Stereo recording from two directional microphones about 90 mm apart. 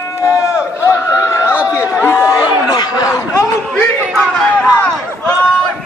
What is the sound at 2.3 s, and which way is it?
Chatter, 50° left (ahead or behind).